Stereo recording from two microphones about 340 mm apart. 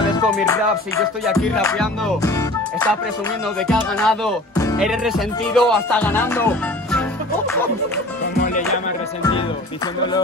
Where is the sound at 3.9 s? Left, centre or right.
Centre.